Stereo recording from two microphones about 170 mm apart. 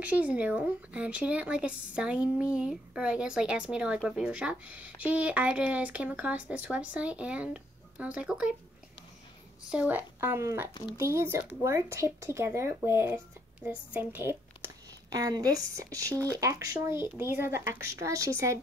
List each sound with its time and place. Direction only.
0.0 s speech: 10° right (ahead or behind)
9.7 s a woman's voice: 10° right (ahead or behind)